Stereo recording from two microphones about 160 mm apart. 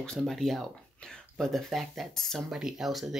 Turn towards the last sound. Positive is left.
turn(degrees=0)  # may be behind; listen again after turning